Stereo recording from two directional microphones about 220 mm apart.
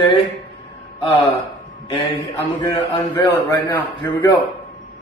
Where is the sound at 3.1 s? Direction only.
10° left (ahead or behind).